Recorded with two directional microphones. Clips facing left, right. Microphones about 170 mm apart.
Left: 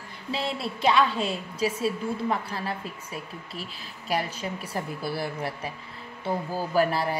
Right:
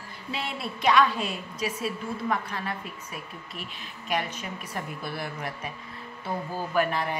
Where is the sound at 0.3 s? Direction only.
30° left (ahead or behind).